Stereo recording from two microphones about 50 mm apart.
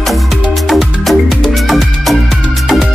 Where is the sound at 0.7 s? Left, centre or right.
Centre.